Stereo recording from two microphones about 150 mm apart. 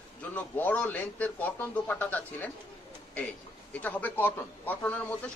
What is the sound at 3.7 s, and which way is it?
Speech, 10° left (ahead or behind).